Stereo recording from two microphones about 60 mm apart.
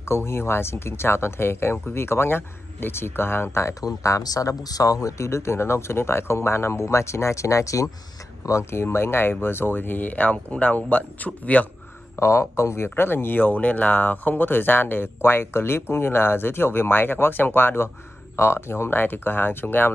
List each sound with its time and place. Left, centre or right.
0.0 s speech: left
3.8 s speech: left
8.5 s speech: left
12.2 s speech: left